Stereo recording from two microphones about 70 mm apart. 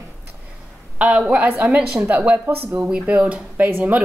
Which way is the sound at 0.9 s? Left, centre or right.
Centre.